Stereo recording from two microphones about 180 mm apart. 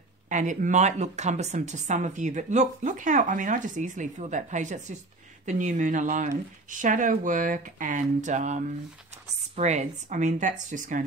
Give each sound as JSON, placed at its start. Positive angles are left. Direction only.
{"t": 0.3, "sound": "speech", "side_deg": -45}